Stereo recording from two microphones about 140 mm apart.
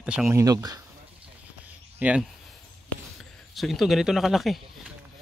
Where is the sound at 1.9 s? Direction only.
10° right (ahead or behind).